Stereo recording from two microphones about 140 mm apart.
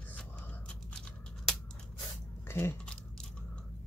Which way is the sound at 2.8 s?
5° left (ahead or behind).